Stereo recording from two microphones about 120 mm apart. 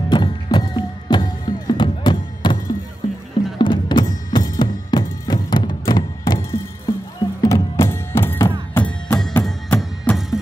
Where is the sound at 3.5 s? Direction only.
40° left (ahead or behind).